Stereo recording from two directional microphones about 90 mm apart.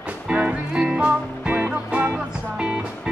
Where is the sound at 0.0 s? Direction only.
15° right (ahead or behind).